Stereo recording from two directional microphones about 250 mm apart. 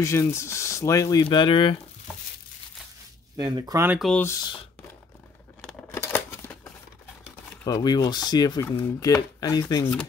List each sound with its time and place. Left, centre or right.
0.0 s speech: centre
3.3 s speech: centre
5.7 s scissors: centre
7.6 s speech: centre